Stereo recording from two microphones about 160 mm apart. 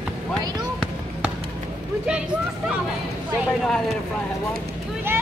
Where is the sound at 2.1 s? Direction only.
5° right (ahead or behind).